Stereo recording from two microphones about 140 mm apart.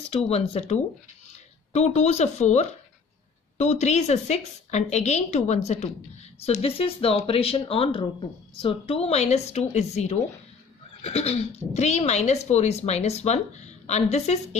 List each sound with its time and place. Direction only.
0.3 s speech: 50° left (ahead or behind)